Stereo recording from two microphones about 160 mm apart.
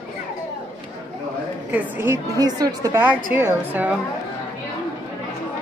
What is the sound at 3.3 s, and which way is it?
Speech, 10° right (ahead or behind).